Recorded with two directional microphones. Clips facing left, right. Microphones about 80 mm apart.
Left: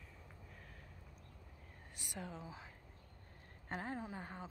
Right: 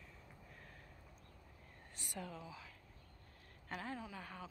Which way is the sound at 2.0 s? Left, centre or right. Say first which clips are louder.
Even; centre.